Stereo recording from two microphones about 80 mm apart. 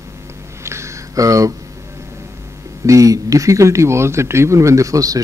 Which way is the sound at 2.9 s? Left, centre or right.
Right.